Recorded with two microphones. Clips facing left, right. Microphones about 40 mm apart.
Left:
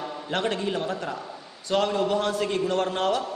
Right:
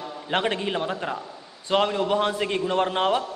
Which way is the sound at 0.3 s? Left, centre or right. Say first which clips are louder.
Right 2 dB; right.